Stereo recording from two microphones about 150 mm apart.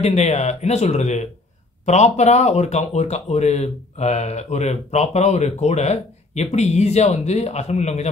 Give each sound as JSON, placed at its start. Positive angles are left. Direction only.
{"t": 0.0, "sound": "speech", "side_deg": 50}